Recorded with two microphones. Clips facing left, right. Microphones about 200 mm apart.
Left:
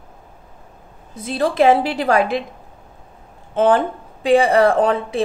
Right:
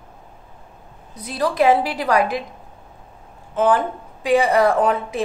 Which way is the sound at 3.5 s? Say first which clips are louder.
Left 3 dB; 30° left (ahead or behind).